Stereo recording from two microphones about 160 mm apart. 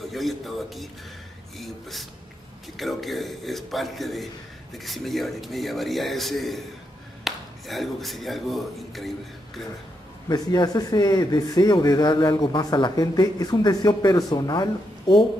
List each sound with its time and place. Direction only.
0.1 s a man's voice: centre (ahead or behind)
10.2 s speech: 25° left (ahead or behind)